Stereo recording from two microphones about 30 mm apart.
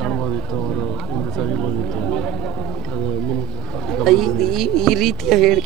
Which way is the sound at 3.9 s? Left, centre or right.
Centre.